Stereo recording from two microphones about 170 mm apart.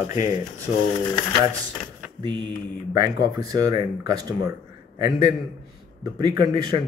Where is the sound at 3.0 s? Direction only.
20° right (ahead or behind).